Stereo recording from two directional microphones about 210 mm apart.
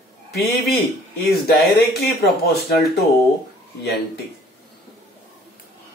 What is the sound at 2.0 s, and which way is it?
Speech, 50° left (ahead or behind).